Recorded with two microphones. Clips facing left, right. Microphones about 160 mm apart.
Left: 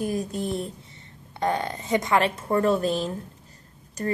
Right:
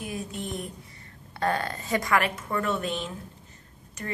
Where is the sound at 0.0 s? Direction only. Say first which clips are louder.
Left 7 dB; 40° left (ahead or behind).